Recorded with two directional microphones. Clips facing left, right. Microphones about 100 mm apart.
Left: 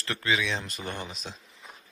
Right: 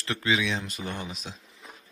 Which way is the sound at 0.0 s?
15° right (ahead or behind).